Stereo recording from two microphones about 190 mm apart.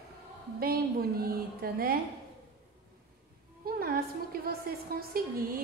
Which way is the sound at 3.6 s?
55° right (ahead or behind).